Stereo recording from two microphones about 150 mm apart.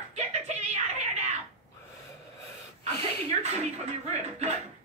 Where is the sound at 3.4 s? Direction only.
45° right (ahead or behind).